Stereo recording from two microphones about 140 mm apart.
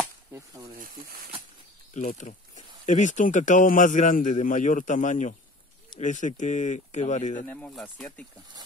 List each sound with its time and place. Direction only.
0.7 s speech: 85° right
2.0 s speech: 60° left (ahead or behind)
7.4 s speech: 10° left (ahead or behind)